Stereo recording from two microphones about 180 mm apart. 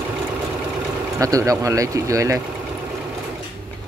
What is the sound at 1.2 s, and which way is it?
Speech, 20° right (ahead or behind).